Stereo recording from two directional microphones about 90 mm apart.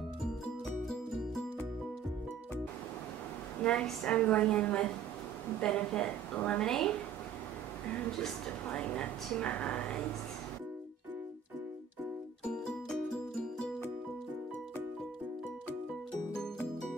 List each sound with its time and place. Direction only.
0.8 s music: 5° left (ahead or behind)
3.6 s a woman's voice: 10° left (ahead or behind)
8.6 s a woman's voice: 10° left (ahead or behind)